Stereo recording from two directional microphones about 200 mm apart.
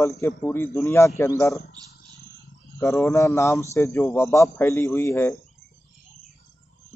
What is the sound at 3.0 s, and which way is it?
A man's voice, 15° left (ahead or behind).